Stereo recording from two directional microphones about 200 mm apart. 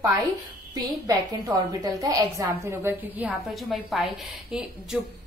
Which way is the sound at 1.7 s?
15° right (ahead or behind).